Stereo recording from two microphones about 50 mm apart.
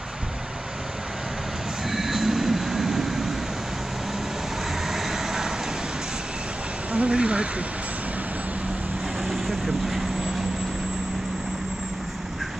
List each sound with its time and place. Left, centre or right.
1.9 s train: centre
4.8 s vehicle: centre
6.9 s a sound: right
9.3 s vehicle: centre